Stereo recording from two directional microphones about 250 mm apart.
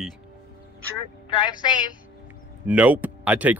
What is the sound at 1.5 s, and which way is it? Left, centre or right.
Speech, centre.